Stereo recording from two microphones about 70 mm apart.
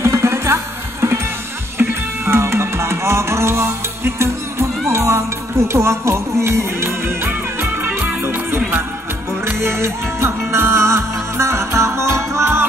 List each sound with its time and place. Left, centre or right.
0.0 s music: right
1.8 s music: right